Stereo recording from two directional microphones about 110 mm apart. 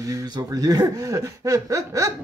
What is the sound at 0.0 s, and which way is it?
Speech, 30° right (ahead or behind).